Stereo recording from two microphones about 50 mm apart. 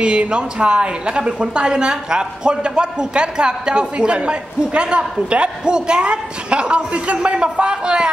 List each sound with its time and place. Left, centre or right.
0.0 s a woman's voice: centre